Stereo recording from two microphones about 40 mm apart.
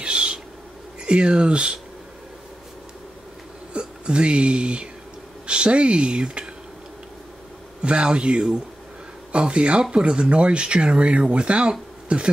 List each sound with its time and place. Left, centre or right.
0.0 s owl: right
1.0 s speech: right
3.7 s speech: right
7.8 s speech: right